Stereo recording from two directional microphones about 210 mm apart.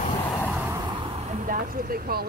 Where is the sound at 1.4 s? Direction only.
40° right (ahead or behind).